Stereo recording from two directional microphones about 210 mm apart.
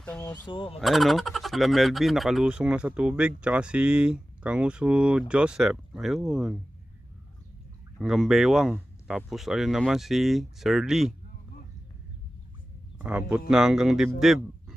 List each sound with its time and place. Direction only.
0.0 s speech: 5° left (ahead or behind)
0.5 s fowl: 25° left (ahead or behind)
0.7 s fowl: centre (ahead or behind)
8.0 s fowl: centre (ahead or behind)
13.5 s fowl: centre (ahead or behind)